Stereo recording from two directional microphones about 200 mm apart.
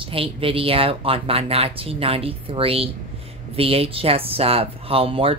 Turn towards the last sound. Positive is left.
turn(degrees=-25)  # may be behind; listen again after turning